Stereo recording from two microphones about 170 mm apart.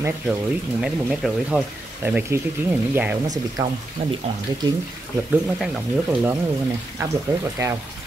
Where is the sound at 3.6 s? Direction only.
20° right (ahead or behind).